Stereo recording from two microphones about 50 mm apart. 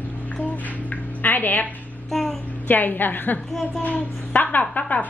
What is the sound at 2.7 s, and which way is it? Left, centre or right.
A woman's voice, left.